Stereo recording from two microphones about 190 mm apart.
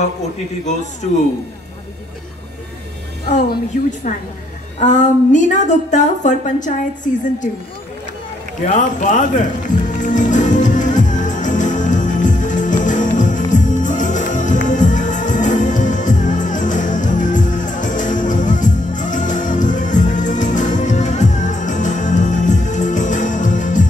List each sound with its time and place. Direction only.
0.7 s a woman's voice: 40° left (ahead or behind)
3.7 s a woman's voice: 45° left (ahead or behind)
8.6 s a woman's voice: 40° left (ahead or behind)
9.8 s music: 40° left (ahead or behind)